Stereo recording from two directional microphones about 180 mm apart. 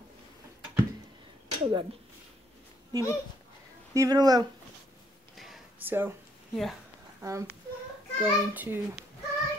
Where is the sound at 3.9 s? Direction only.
20° right (ahead or behind).